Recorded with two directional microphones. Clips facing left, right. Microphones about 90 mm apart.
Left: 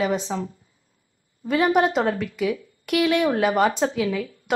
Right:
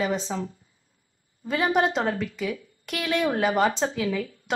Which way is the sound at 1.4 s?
5° left (ahead or behind).